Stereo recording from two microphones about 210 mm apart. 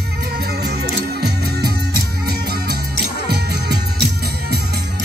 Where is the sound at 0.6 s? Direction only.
50° right (ahead or behind).